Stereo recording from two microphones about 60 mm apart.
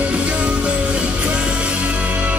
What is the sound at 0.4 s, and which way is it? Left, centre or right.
Music, centre.